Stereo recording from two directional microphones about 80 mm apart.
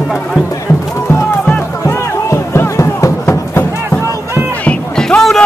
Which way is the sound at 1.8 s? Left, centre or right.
Left.